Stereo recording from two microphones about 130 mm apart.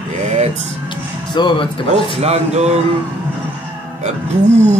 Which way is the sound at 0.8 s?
35° left (ahead or behind).